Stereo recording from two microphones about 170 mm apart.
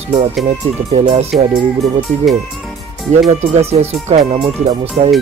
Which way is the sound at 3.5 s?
35° right (ahead or behind).